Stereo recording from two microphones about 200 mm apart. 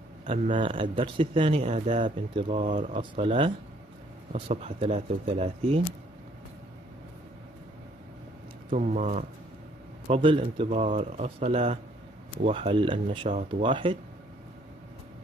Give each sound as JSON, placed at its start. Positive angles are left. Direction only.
{"t": 0.5, "sound": "speech", "side_deg": -25}
{"t": 8.6, "sound": "speech", "side_deg": -40}
{"t": 10.0, "sound": "speech", "side_deg": -25}